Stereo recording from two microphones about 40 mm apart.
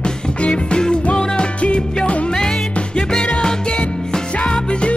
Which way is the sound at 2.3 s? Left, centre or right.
Centre.